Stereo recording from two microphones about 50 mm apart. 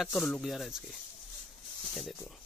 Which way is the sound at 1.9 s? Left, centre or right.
Centre.